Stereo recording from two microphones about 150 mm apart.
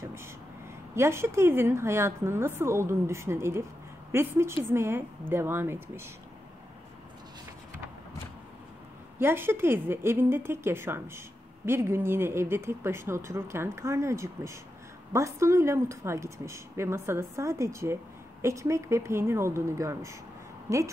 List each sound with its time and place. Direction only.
0.0 s a sound: 15° right (ahead or behind)
0.9 s a woman's voice: 15° right (ahead or behind)
9.2 s a woman's voice: 15° right (ahead or behind)